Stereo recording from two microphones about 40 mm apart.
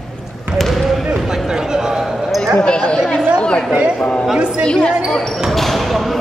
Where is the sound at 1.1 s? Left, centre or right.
Centre.